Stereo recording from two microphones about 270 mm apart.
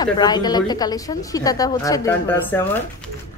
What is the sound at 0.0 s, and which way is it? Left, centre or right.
Speech, centre.